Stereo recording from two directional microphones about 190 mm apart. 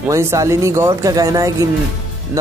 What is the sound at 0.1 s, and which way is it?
Speech, 15° right (ahead or behind).